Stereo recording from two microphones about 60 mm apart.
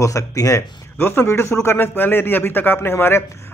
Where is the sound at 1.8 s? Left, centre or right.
Left.